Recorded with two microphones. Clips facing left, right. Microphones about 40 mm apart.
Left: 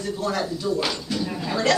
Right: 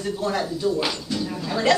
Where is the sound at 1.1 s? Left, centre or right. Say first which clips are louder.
Even; centre.